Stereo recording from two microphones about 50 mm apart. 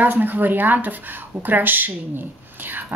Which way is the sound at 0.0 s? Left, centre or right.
Right.